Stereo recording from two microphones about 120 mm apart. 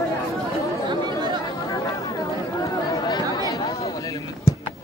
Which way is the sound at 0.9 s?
40° right (ahead or behind).